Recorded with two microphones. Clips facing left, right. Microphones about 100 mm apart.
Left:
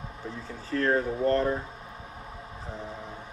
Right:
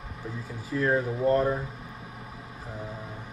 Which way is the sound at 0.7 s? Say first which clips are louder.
Even; 10° right (ahead or behind).